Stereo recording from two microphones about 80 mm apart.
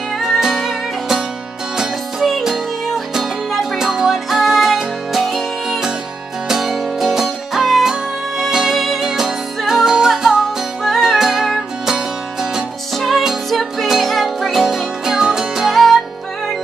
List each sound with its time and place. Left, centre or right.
0.2 s music: centre